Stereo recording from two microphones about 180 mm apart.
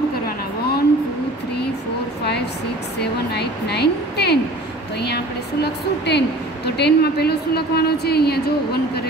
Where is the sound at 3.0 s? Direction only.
65° left (ahead or behind).